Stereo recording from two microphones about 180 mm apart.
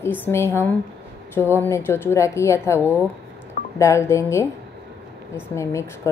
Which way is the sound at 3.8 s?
15° left (ahead or behind).